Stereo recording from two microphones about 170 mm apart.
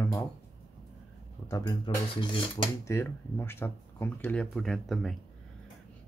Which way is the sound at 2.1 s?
30° left (ahead or behind).